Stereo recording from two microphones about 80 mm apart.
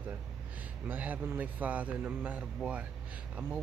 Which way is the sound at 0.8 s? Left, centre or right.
Right.